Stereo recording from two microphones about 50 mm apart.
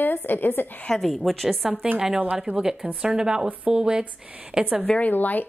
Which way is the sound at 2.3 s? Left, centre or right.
Centre.